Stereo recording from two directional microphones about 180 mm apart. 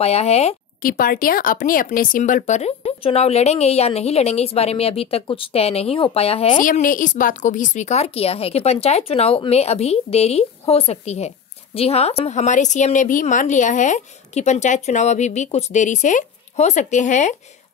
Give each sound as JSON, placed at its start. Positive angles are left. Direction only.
{"t": 0.0, "sound": "a woman's voice", "side_deg": 35}
{"t": 0.8, "sound": "a woman's voice", "side_deg": 50}
{"t": 6.6, "sound": "a woman's voice", "side_deg": 50}